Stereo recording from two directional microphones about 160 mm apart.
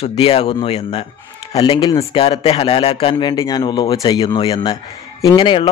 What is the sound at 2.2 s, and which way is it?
Speech, 40° left (ahead or behind).